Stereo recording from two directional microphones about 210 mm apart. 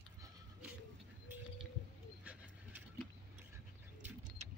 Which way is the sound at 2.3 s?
5° right (ahead or behind).